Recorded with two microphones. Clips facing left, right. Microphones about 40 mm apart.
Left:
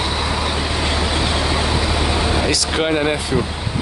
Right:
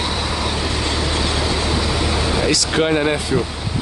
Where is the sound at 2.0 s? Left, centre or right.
Centre.